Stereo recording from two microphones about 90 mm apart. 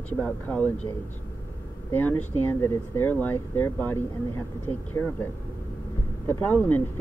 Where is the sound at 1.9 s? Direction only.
20° left (ahead or behind).